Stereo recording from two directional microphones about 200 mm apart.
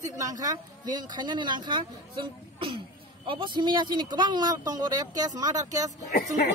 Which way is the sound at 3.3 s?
25° right (ahead or behind).